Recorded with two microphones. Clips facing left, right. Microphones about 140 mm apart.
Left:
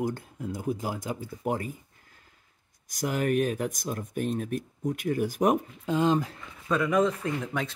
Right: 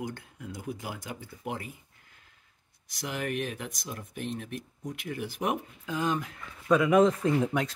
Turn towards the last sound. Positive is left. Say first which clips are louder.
# right 3 dB
turn(degrees=-25)  # may be behind; listen again after turning